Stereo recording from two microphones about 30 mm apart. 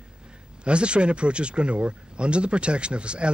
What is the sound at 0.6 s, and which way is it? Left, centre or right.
Speech, right.